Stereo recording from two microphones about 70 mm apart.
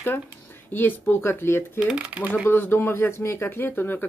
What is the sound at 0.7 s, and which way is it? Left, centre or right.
Speech, left.